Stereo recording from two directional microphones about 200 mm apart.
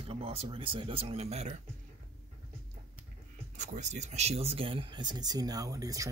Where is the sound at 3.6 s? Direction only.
35° right (ahead or behind).